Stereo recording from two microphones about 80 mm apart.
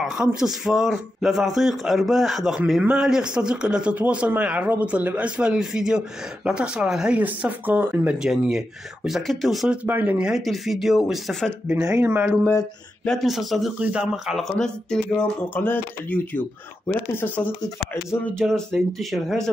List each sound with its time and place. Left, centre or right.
0.0 s speech: centre
7.2 s speech: right
8.2 s speech: centre
9.8 s speech: centre
10.4 s speech: centre
12.0 s speech: right
13.0 s a man's voice: centre
13.7 s speech: centre
14.6 s speech: centre
15.6 s speech: left
18.4 s speech: centre